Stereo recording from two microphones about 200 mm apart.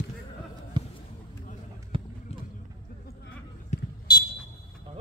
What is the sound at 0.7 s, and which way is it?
Basketball bounce, 20° right (ahead or behind).